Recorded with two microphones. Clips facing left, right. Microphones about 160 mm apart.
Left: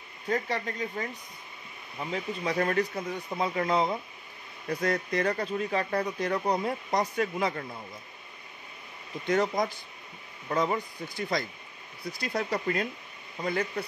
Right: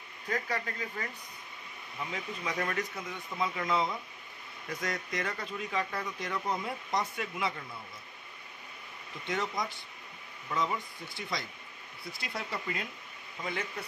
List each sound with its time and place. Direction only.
0.3 s speech: 25° left (ahead or behind); by 7.6 s 40° left (ahead or behind)
9.3 s speech: 40° left (ahead or behind)